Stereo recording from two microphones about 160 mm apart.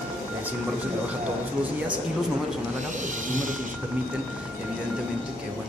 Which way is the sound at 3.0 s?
55° right (ahead or behind).